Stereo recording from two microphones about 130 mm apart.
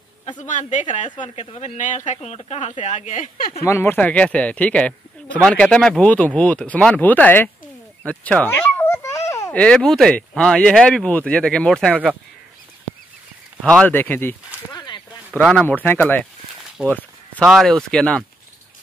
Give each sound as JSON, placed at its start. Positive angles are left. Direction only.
{"t": 0.4, "sound": "speech", "side_deg": 70}
{"t": 1.2, "sound": "speech", "side_deg": 55}
{"t": 1.8, "sound": "speech", "side_deg": 75}
{"t": 3.6, "sound": "speech", "side_deg": 20}
{"t": 8.1, "sound": "a sound", "side_deg": 10}
{"t": 9.5, "sound": "speech", "side_deg": 10}
{"t": 13.7, "sound": "speech", "side_deg": 15}
{"t": 14.7, "sound": "a sound", "side_deg": 30}
{"t": 15.4, "sound": "speech", "side_deg": 10}
{"t": 16.9, "sound": "a sound", "side_deg": 10}
{"t": 17.5, "sound": "speech", "side_deg": 0}